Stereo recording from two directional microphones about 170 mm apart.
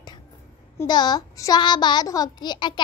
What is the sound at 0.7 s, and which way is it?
A child's voice, 25° left (ahead or behind).